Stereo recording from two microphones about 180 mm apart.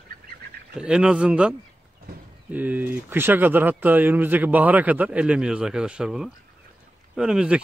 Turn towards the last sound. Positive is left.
turn(degrees=-5)  # may be behind; listen again after turning